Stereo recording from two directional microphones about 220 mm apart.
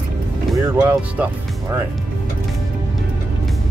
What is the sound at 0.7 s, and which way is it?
Speech, 10° right (ahead or behind).